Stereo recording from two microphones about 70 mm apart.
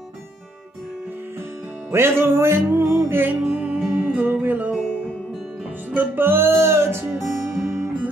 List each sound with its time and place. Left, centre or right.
1.9 s music: right
4.2 s music: right
5.9 s music: right
7.2 s music: centre